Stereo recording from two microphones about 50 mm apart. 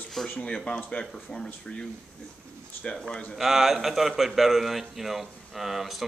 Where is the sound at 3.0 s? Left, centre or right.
Centre.